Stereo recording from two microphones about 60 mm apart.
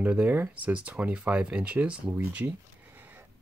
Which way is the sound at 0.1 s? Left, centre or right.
Right.